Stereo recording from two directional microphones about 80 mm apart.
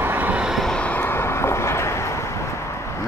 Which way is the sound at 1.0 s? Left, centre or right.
Left.